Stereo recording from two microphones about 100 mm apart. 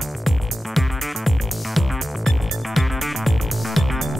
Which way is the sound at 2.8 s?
Centre (ahead or behind).